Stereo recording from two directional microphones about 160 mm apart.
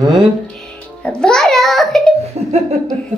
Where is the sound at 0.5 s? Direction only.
5° left (ahead or behind).